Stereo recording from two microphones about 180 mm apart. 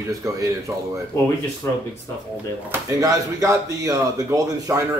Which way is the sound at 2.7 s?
20° right (ahead or behind).